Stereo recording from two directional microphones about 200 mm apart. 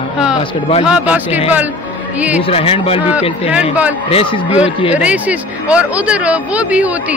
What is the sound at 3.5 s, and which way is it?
Speech, 5° right (ahead or behind).